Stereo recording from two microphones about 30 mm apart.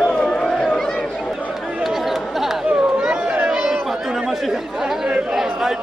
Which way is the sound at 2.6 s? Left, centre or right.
Right.